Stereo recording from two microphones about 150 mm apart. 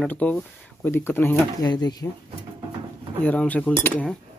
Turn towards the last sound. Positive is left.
turn(degrees=10)  # may be behind; listen again after turning